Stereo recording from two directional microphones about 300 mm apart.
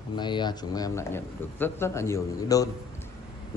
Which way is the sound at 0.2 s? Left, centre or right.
Centre.